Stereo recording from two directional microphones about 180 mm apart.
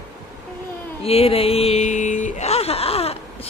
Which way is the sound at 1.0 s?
35° left (ahead or behind).